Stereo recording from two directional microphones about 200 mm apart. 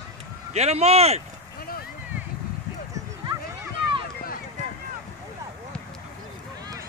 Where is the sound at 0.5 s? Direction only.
30° right (ahead or behind).